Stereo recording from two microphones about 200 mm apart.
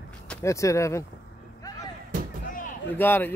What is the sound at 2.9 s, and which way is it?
Speech, 10° left (ahead or behind).